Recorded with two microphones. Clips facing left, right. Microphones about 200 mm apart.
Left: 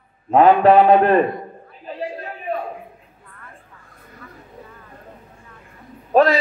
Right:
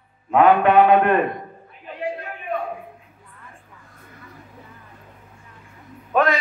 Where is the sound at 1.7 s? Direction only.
35° left (ahead or behind).